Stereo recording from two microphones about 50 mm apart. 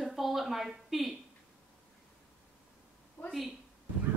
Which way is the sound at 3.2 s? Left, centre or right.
Left.